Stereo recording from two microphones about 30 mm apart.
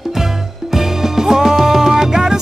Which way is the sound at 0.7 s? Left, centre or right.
Centre.